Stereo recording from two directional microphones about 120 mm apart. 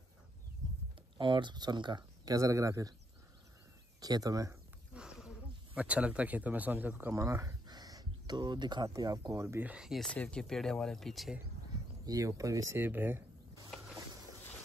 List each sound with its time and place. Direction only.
1.1 s speech: 40° right (ahead or behind)
4.0 s speech: 30° right (ahead or behind)
4.9 s a sound: 5° right (ahead or behind)
5.8 s speech: 10° right (ahead or behind)
12.1 s speech: 30° right (ahead or behind)